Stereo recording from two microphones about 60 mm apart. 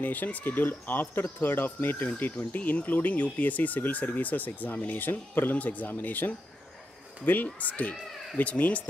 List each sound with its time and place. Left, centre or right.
0.0 s speech: left
7.5 s speech: left